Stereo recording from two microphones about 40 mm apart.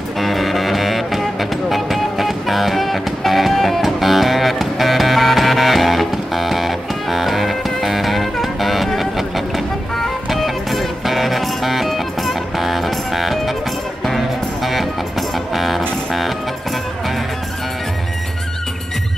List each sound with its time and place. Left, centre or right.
0.2 s music: centre
10.3 s music: centre